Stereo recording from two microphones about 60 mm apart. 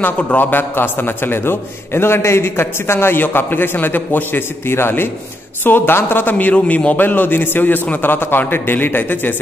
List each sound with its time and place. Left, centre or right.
0.3 s a man's voice: left